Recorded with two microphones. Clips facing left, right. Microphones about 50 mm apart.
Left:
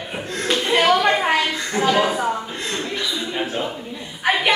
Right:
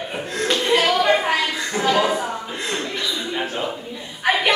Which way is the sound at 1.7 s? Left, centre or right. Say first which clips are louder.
Left 1 dB; centre.